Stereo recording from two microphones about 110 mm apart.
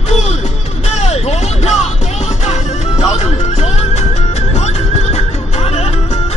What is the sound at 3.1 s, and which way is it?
Music, 90° left.